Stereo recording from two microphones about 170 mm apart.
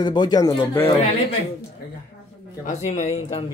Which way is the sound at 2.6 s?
40° left (ahead or behind).